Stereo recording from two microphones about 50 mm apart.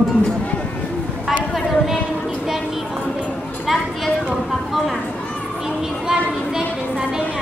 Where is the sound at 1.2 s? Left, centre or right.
Centre.